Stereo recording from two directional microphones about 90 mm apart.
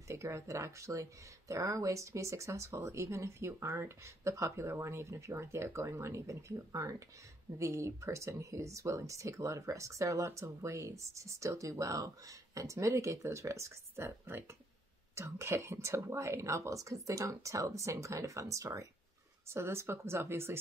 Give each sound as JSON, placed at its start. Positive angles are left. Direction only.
{"t": 0.1, "sound": "speech", "side_deg": -35}